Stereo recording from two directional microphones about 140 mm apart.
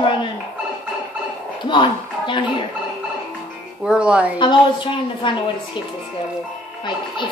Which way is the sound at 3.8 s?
5° right (ahead or behind).